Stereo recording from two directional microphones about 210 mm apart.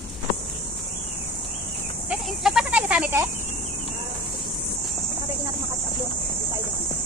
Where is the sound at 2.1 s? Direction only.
Centre (ahead or behind).